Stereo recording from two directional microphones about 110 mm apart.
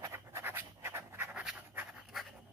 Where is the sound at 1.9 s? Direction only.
Centre (ahead or behind).